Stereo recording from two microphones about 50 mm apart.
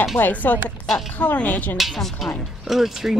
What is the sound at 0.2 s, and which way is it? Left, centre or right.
Speech, left.